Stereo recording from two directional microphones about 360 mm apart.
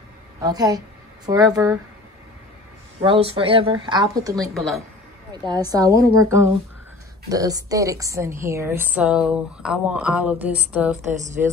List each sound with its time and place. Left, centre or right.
0.4 s a woman's voice: centre
3.0 s speech: centre
5.7 s a woman's voice: centre
11.1 s speech: centre